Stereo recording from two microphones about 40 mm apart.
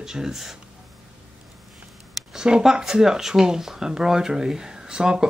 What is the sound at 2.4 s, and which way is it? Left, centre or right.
Speech, centre.